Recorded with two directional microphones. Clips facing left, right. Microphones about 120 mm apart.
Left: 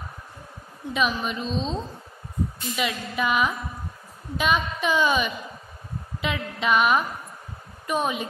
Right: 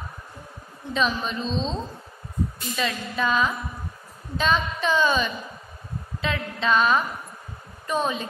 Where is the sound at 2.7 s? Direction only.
15° left (ahead or behind).